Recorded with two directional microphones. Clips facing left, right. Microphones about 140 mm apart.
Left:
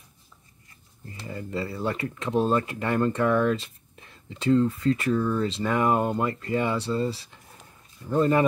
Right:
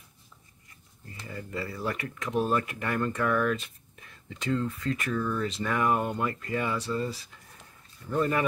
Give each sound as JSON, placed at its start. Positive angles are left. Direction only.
{"t": 1.2, "sound": "speech", "side_deg": 25}